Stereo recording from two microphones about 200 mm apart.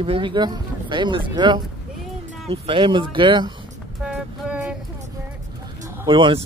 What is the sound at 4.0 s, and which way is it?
Vehicle, 5° right (ahead or behind).